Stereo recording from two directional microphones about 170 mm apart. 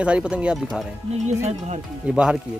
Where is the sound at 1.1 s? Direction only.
40° right (ahead or behind).